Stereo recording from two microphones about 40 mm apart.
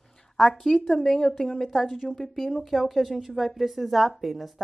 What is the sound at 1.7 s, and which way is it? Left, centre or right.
A woman's voice, centre.